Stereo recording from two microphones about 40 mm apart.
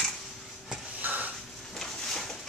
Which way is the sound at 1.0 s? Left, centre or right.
Right.